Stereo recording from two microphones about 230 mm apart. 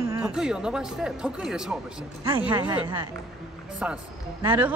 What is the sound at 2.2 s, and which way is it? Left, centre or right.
Wail, right.